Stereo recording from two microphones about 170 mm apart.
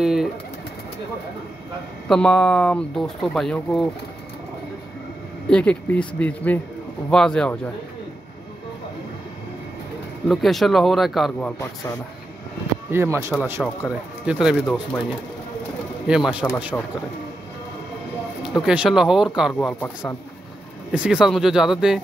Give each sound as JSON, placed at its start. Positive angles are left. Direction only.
{"t": 0.0, "sound": "pigeon", "side_deg": -5}
{"t": 2.0, "sound": "speech", "side_deg": 5}
{"t": 5.5, "sound": "speech", "side_deg": 5}
{"t": 10.2, "sound": "speech", "side_deg": 0}
{"t": 12.9, "sound": "speech", "side_deg": -15}
{"t": 13.6, "sound": "speech", "side_deg": 0}
{"t": 16.1, "sound": "speech", "side_deg": -5}
{"t": 18.5, "sound": "speech", "side_deg": -5}
{"t": 20.9, "sound": "speech", "side_deg": -5}